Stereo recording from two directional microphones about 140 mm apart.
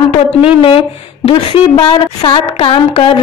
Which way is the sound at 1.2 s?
40° left (ahead or behind).